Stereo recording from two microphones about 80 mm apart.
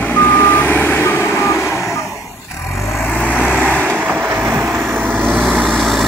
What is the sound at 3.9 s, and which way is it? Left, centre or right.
Vehicle, right.